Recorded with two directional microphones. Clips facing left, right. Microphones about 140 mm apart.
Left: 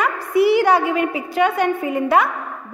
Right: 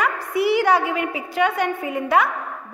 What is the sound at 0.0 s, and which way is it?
A woman's voice, 35° left (ahead or behind).